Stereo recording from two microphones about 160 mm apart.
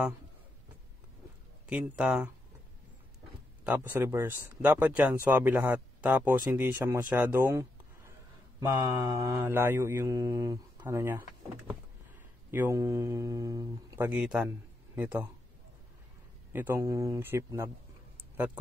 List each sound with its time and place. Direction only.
1.7 s speech: 5° right (ahead or behind)
3.6 s speech: 10° right (ahead or behind)
12.4 s speech: 15° right (ahead or behind)
16.5 s speech: 15° right (ahead or behind)
18.3 s tick: 10° right (ahead or behind)